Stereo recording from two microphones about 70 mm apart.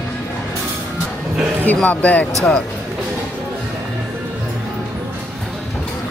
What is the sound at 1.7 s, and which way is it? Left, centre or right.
Speech, left.